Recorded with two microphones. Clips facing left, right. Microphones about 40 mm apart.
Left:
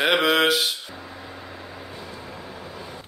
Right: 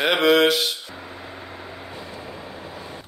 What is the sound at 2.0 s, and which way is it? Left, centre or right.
Vehicle, centre.